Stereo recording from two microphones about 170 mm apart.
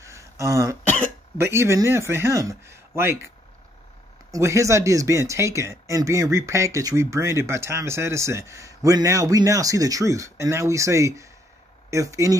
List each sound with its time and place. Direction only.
0.0 s throat clearing: 15° right (ahead or behind)
0.8 s cough: 10° left (ahead or behind)
1.4 s speech: 15° right (ahead or behind)
4.3 s speech: 15° right (ahead or behind)